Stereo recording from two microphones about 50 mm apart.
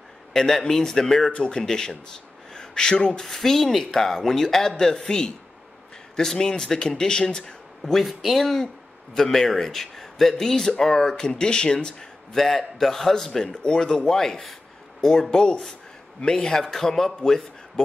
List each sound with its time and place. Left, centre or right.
0.3 s speech: centre
3.3 s speech: centre
7.9 s a man's voice: centre